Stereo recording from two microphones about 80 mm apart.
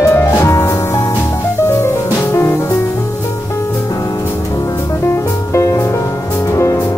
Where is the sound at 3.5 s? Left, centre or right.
Left.